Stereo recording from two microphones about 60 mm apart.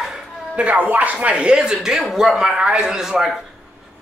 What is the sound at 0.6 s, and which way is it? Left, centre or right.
A man's voice, right.